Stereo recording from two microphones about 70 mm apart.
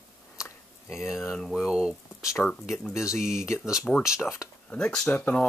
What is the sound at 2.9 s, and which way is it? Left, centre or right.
Speech, left.